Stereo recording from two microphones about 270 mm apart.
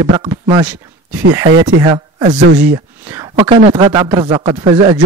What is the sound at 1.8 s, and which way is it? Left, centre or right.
Speech, centre.